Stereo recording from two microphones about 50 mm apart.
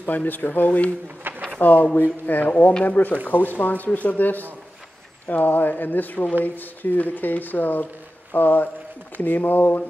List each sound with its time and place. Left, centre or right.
0.0 s speech: left
1.3 s a sound: right
1.6 s speech: left